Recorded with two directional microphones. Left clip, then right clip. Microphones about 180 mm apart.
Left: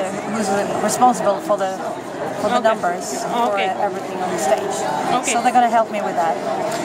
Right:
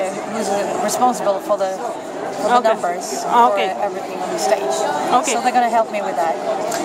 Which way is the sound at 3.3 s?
35° right (ahead or behind).